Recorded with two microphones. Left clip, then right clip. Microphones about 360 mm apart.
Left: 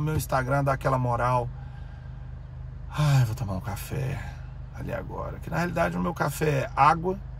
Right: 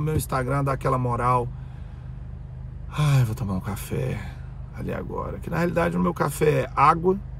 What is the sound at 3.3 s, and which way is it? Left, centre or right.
Speech, centre.